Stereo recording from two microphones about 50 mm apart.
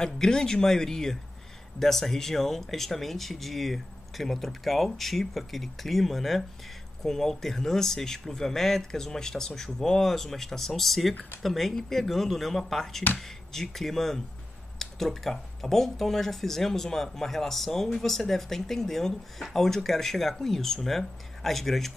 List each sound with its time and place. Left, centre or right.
0.0 s speech: centre